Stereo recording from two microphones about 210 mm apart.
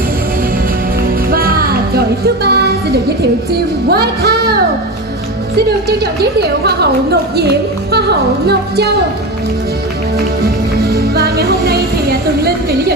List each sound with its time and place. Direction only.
1.3 s music: 45° right (ahead or behind)
3.9 s speech: 50° right (ahead or behind)
6.6 s speech: 50° right (ahead or behind)
10.8 s music: 50° right (ahead or behind)